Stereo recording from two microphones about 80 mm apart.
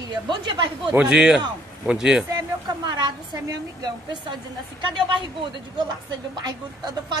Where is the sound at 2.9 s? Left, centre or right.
Right.